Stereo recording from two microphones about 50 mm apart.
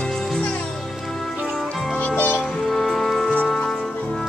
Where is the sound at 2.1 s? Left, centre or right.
Left.